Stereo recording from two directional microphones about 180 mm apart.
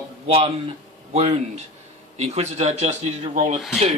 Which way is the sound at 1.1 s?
35° right (ahead or behind).